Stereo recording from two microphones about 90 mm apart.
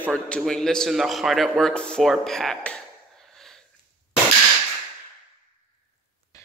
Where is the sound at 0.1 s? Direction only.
10° left (ahead or behind).